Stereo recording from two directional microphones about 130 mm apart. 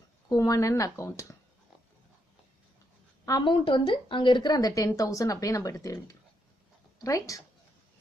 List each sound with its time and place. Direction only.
0.3 s a woman's voice: 25° left (ahead or behind)
3.3 s a woman's voice: 35° left (ahead or behind)